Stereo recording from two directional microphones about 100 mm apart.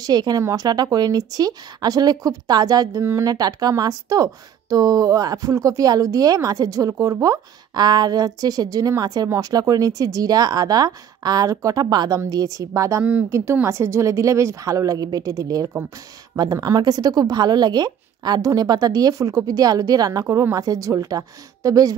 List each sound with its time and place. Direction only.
0.0 s speech: 40° right (ahead or behind)
3.0 s speech: 25° right (ahead or behind)
3.3 s speech: 40° right (ahead or behind)